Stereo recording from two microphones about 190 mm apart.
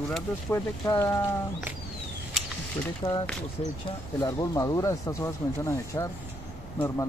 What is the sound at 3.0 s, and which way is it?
Speech, 25° left (ahead or behind).